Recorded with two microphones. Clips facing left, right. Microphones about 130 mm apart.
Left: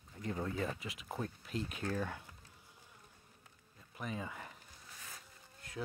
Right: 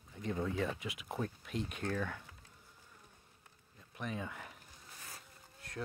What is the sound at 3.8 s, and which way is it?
Insect, centre (ahead or behind).